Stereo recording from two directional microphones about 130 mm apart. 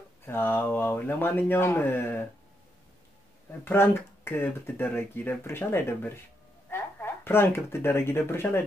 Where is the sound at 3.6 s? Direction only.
15° left (ahead or behind).